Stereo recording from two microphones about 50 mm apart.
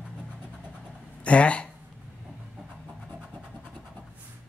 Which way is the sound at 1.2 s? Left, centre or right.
Left.